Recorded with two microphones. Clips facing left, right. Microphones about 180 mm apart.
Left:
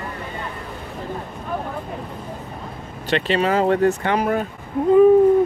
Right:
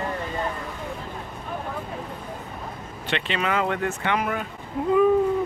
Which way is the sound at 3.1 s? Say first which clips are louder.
Left 7 dB; 40° left (ahead or behind).